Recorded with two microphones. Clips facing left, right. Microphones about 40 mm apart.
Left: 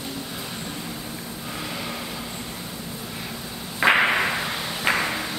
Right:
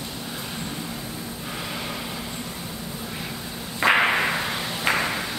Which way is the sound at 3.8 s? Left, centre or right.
Centre.